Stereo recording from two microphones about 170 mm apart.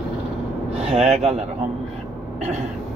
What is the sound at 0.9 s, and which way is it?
Speech, 40° right (ahead or behind).